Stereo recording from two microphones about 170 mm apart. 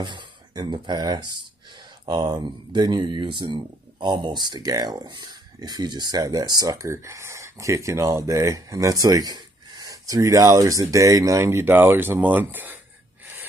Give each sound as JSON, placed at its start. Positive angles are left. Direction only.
{"t": 0.0, "sound": "speech", "side_deg": -25}